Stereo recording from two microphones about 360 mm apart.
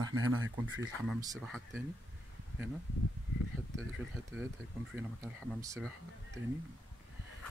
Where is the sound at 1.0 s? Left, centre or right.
Centre.